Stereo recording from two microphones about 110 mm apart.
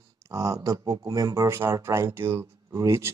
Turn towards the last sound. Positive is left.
turn(degrees=-25)  # may be behind; listen again after turning